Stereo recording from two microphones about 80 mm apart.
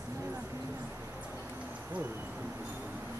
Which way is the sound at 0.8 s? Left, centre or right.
Centre.